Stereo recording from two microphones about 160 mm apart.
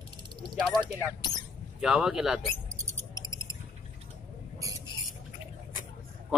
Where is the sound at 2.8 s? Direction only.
25° right (ahead or behind).